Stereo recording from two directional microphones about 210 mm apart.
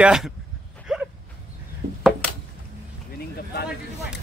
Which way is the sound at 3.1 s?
50° left (ahead or behind).